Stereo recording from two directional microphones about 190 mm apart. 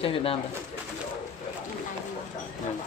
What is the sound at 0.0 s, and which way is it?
Speech, 30° left (ahead or behind).